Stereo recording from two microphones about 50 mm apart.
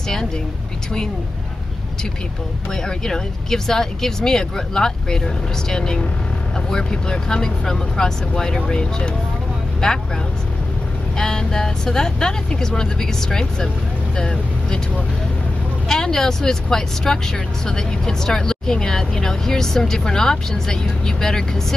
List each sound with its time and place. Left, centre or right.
2.7 s speech: centre
11.1 s speech: centre
15.9 s speech: centre